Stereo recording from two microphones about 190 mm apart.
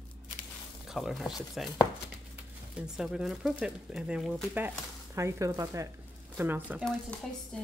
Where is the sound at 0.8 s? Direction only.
Centre (ahead or behind).